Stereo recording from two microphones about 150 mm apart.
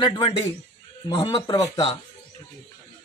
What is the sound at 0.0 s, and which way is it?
Speech, 30° left (ahead or behind).